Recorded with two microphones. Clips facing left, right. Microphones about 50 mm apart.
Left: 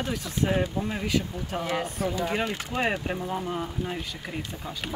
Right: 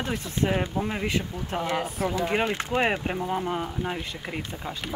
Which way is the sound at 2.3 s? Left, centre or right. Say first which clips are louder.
Right 3 dB; right.